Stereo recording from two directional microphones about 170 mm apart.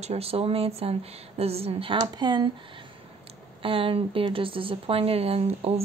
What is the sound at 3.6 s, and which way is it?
Speech, 35° right (ahead or behind).